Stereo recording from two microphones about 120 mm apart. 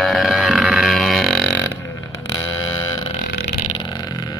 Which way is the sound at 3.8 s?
35° left (ahead or behind).